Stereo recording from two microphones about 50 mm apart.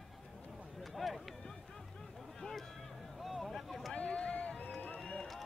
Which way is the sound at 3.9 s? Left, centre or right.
Left.